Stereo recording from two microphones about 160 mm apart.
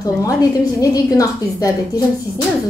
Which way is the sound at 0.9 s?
20° left (ahead or behind).